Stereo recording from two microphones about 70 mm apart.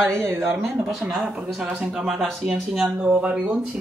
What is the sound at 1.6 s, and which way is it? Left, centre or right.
Speech, centre.